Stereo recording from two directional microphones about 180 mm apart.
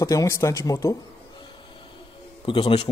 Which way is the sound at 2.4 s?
30° left (ahead or behind).